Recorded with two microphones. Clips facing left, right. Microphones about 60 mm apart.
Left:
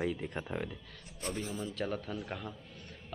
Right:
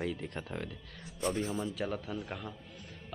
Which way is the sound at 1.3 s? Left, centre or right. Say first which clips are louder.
Right 4 dB; right.